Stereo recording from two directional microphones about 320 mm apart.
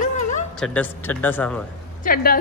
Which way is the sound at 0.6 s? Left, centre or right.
Centre.